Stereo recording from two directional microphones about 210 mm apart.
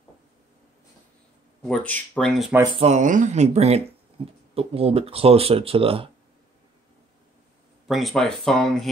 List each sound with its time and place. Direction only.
1.6 s speech: 5° left (ahead or behind)
2.6 s speech: 25° right (ahead or behind)
7.9 s speech: centre (ahead or behind)